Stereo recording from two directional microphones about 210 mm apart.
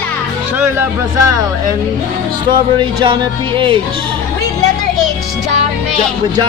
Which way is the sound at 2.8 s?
25° right (ahead or behind).